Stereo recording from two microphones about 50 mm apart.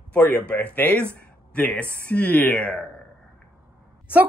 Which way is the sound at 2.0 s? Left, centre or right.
Left.